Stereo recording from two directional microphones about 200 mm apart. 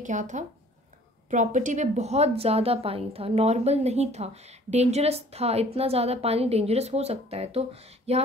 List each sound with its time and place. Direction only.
0.0 s a woman's voice: 40° right (ahead or behind)